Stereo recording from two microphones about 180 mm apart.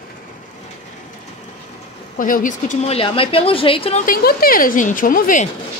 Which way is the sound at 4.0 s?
55° left (ahead or behind).